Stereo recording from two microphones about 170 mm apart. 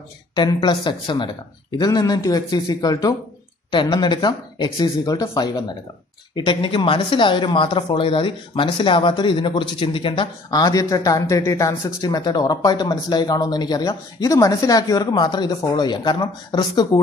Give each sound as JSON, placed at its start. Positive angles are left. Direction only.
{"t": 0.4, "sound": "speech", "side_deg": 25}